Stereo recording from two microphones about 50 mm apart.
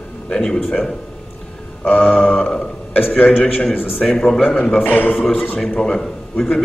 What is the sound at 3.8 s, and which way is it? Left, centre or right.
Speech, centre.